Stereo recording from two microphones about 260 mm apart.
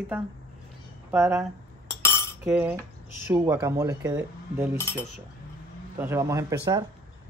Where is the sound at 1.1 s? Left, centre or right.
Centre.